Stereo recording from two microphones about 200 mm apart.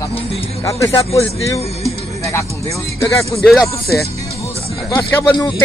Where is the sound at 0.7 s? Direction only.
15° left (ahead or behind).